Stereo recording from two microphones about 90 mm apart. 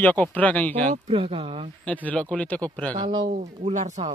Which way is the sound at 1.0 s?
90° right.